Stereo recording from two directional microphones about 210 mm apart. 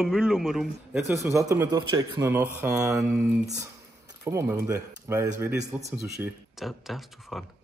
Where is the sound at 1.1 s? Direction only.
15° right (ahead or behind).